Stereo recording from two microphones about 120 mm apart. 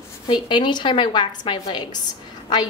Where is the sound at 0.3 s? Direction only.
40° left (ahead or behind).